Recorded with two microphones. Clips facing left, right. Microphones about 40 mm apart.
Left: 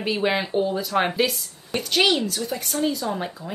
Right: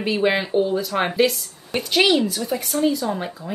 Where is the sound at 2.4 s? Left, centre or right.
Centre.